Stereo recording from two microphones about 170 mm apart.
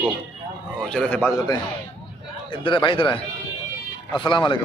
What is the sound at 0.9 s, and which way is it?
Speech, 10° left (ahead or behind).